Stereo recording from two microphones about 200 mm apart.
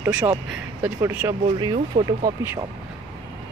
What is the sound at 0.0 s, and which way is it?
Speech, 10° right (ahead or behind).